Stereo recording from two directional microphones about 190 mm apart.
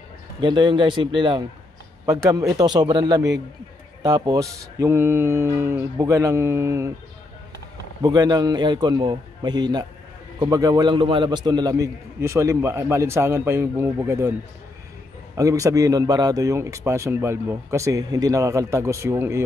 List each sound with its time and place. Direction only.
0.4 s a man's voice: 25° right (ahead or behind)
8.0 s a man's voice: 20° right (ahead or behind)
15.3 s speech: 15° right (ahead or behind)